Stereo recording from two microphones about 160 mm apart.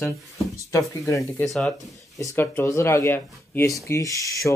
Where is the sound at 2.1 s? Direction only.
15° left (ahead or behind).